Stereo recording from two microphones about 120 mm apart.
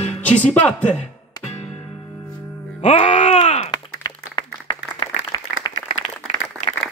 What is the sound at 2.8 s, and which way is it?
Music, 85° left.